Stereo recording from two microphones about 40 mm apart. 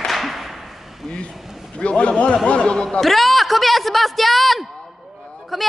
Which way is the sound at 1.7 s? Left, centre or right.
Left.